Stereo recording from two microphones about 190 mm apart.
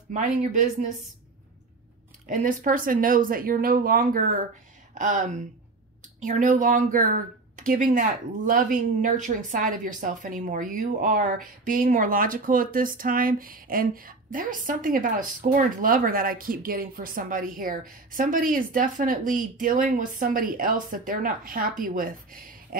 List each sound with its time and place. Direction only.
0.1 s speech: 40° right (ahead or behind)
2.2 s speech: 45° right (ahead or behind)